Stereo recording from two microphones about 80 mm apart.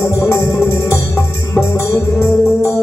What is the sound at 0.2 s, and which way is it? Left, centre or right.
Music, left.